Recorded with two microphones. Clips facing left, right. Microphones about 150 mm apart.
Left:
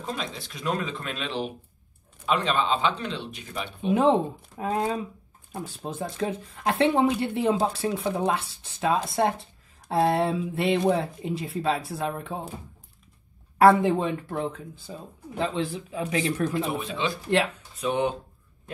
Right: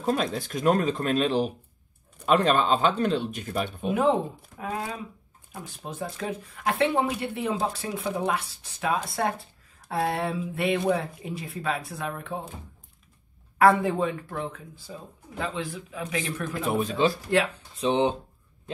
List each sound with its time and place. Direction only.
0.0 s speech: 50° right (ahead or behind)
3.9 s speech: 30° left (ahead or behind)
13.6 s speech: 25° left (ahead or behind)
16.6 s speech: 45° right (ahead or behind)
17.6 s speech: 25° right (ahead or behind)